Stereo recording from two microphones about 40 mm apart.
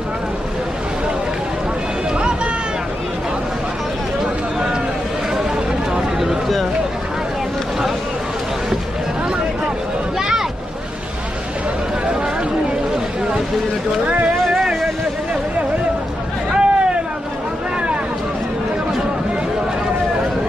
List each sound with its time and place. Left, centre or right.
5.9 s a sound: centre
10.1 s boat: centre
16.5 s hubbub: right